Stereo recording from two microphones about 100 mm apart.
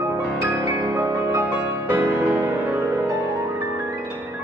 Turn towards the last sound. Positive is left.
turn(degrees=-20)  # may be behind; listen again after turning